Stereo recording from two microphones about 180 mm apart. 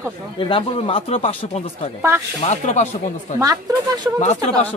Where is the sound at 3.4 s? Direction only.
20° right (ahead or behind).